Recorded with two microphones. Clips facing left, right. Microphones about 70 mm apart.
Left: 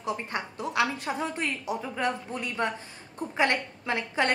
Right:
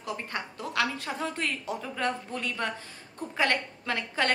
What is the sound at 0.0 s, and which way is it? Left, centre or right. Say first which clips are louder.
A woman's voice: left 3 dB; left.